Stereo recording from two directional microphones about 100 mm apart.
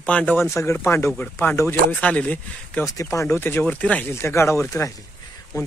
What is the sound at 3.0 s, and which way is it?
Speech, 30° left (ahead or behind).